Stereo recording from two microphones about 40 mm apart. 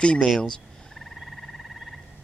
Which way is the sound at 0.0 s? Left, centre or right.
Left.